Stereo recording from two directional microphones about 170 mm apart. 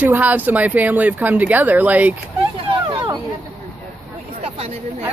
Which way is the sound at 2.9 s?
30° right (ahead or behind).